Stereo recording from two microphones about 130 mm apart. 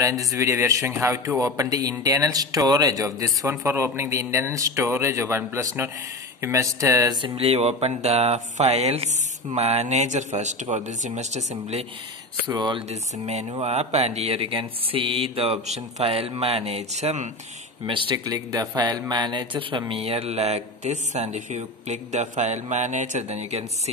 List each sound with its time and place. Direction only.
0.0 s speech: 25° right (ahead or behind)
7.2 s speech: 45° right (ahead or behind); by 11.8 s 60° right (ahead or behind)
12.4 s a man's voice: 35° right (ahead or behind)
13.5 s speech: 50° right (ahead or behind)
17.8 s a man's voice: 40° right (ahead or behind)
19.9 s speech: 50° right (ahead or behind)